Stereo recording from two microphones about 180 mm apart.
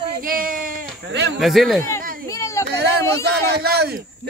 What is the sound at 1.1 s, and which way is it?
Speech, 70° right (ahead or behind).